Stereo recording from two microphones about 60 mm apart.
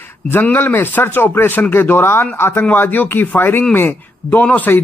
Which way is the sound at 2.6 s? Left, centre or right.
Left.